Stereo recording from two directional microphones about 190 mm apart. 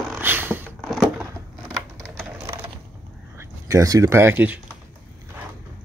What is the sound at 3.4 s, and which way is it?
Speech, 15° right (ahead or behind).